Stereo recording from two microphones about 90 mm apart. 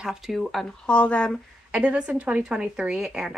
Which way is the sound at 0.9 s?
15° left (ahead or behind).